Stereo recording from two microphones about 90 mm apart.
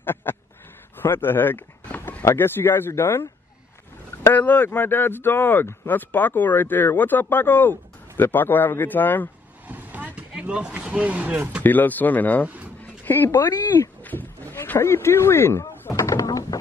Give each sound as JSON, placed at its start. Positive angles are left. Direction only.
{"t": 0.0, "sound": "duck", "side_deg": 25}
{"t": 0.9, "sound": "speech", "side_deg": 25}
{"t": 4.3, "sound": "speech", "side_deg": 20}
{"t": 9.7, "sound": "vehicle", "side_deg": -20}
{"t": 11.6, "sound": "speech", "side_deg": 20}
{"t": 12.4, "sound": "a sound", "side_deg": -15}
{"t": 13.0, "sound": "speech", "side_deg": 25}
{"t": 13.7, "sound": "a sound", "side_deg": 25}
{"t": 16.0, "sound": "a sound", "side_deg": 40}